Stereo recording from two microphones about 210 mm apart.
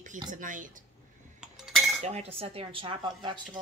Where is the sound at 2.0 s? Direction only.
30° right (ahead or behind).